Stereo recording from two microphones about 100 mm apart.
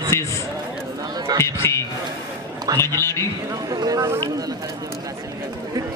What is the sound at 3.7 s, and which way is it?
Speech, 40° right (ahead or behind).